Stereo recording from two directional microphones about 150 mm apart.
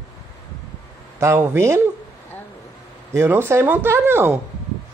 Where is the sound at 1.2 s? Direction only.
15° right (ahead or behind).